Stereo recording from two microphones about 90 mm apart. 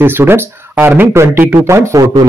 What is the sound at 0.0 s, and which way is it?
Speech, 25° right (ahead or behind).